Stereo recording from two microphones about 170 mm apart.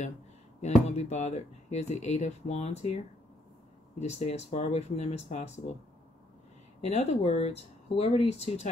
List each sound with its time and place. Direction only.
0.6 s speech: 40° left (ahead or behind)
4.0 s speech: 40° left (ahead or behind)
6.8 s speech: 40° left (ahead or behind)